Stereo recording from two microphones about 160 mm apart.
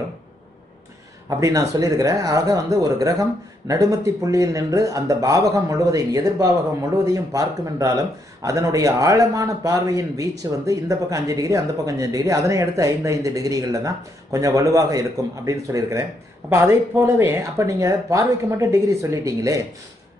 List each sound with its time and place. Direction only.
1.4 s speech: 20° right (ahead or behind)